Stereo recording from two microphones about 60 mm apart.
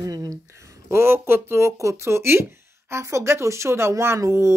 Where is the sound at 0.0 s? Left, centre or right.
Right.